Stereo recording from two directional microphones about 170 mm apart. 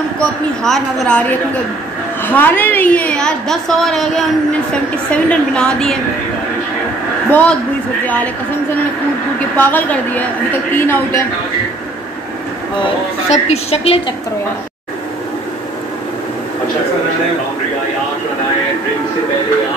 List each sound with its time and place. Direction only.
0.7 s a woman's voice: centre (ahead or behind)
2.2 s a woman's voice: 10° left (ahead or behind)
7.2 s speech: 10° left (ahead or behind)
9.6 s a woman's voice: 10° left (ahead or behind)
13.3 s a woman's voice: 40° left (ahead or behind)